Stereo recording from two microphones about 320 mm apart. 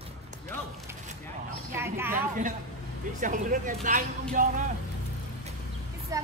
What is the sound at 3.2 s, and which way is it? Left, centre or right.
Speech, right.